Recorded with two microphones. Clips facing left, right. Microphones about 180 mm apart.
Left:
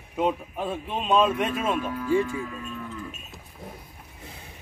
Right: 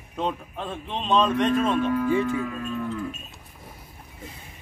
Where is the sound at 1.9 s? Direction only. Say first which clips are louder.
Right 1 dB; 55° right (ahead or behind).